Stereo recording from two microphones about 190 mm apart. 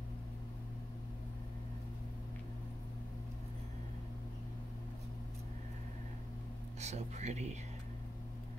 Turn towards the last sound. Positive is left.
turn(degrees=-35)  # may be behind; listen again after turning